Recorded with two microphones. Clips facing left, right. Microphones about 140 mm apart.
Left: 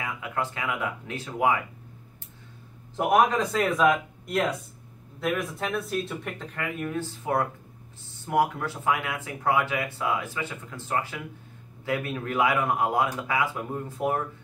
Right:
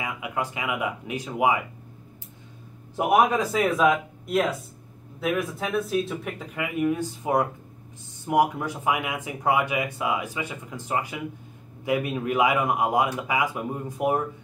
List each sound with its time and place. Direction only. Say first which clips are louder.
0.0 s speech: right 1 dB; 15° right (ahead or behind)
3.0 s speech: right 1 dB; 10° right (ahead or behind)